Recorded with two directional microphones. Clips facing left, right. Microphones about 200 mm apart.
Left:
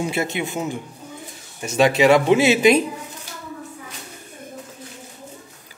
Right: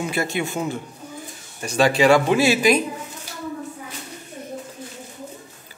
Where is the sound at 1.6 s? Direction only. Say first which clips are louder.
Left 1 dB; 20° left (ahead or behind).